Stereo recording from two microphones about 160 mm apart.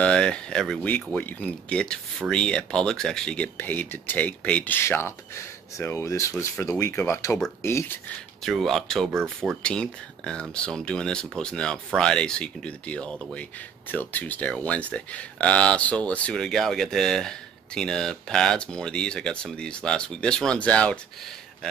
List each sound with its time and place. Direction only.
0.0 s speech: 5° left (ahead or behind)
8.4 s speech: centre (ahead or behind)